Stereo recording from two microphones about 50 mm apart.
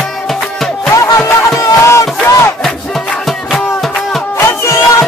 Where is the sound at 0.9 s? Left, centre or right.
Left.